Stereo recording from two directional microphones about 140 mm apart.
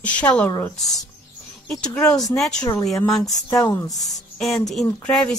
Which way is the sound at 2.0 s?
25° left (ahead or behind).